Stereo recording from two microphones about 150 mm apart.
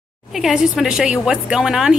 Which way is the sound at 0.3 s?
Centre (ahead or behind).